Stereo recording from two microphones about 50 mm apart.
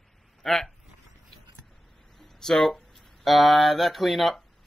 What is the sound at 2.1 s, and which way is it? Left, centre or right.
Speech, centre.